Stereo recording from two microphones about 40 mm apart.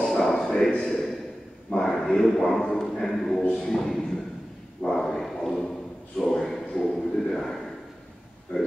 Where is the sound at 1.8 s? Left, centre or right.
Centre.